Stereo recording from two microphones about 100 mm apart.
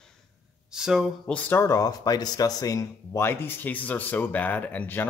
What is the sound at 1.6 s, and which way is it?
Speech, 35° left (ahead or behind).